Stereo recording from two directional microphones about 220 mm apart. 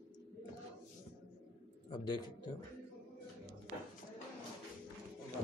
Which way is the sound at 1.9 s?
20° left (ahead or behind).